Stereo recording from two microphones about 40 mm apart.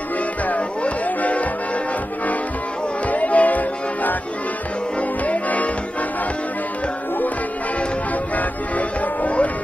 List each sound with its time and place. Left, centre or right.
0.5 s music: left
3.1 s music: left
5.2 s music: left
8.4 s music: left